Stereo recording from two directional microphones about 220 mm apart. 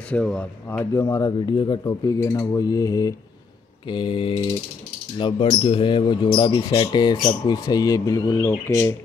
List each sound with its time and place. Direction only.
0.1 s speech: 5° left (ahead or behind)